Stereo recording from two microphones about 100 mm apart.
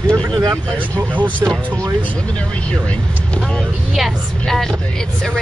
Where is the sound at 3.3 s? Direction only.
5° left (ahead or behind).